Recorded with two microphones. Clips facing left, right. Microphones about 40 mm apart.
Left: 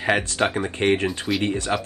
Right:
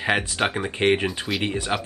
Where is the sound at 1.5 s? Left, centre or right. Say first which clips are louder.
Left 1 dB; centre.